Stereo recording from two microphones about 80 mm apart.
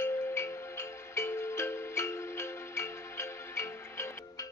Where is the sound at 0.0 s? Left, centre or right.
Left.